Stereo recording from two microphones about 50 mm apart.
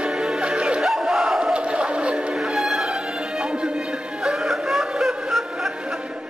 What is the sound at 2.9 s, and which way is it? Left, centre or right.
Music, centre.